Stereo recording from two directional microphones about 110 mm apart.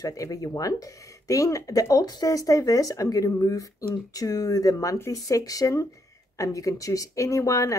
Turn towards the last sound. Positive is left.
turn(degrees=30)  # may be behind; listen again after turning